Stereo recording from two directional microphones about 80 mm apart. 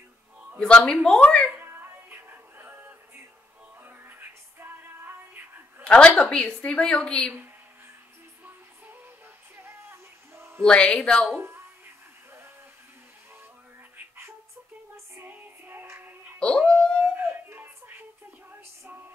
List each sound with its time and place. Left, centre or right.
0.6 s a woman's voice: centre
1.5 s music: right
5.9 s a woman's voice: centre
9.6 s a sound: right
10.6 s a woman's voice: centre
11.3 s a sound: right
15.1 s music: right
16.3 s dog: centre
17.0 s music: right